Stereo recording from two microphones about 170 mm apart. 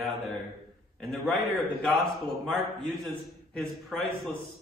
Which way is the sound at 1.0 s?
Centre (ahead or behind).